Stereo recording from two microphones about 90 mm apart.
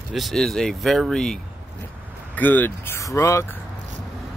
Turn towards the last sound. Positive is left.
turn(degrees=30)  # may be behind; listen again after turning